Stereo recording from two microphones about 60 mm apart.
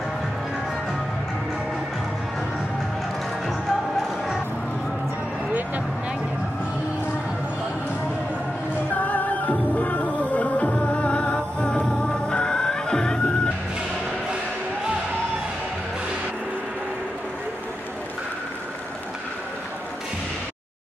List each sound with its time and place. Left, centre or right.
8.9 s music: left